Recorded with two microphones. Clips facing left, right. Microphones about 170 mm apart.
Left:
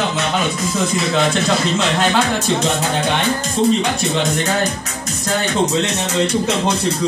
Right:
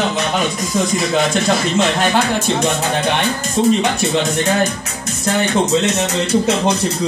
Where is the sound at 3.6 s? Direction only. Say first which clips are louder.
Right 2 dB; 15° right (ahead or behind).